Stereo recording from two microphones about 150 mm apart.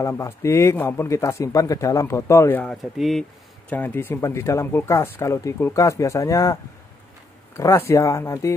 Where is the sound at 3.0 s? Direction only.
Centre (ahead or behind); by 6.5 s 20° left (ahead or behind).